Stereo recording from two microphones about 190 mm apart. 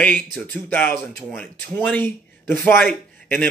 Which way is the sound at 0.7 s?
5° left (ahead or behind).